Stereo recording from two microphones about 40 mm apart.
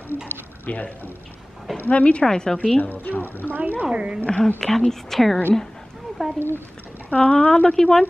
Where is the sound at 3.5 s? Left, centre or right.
Right.